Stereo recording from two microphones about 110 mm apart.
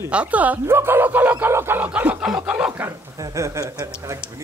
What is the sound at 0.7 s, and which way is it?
Speech, 20° right (ahead or behind).